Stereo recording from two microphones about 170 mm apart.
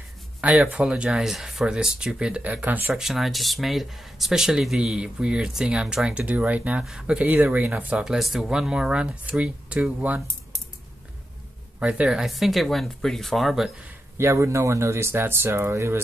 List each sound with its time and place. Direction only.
0.4 s speech: 10° right (ahead or behind)
11.8 s speech: 5° right (ahead or behind)
14.1 s speech: 15° right (ahead or behind)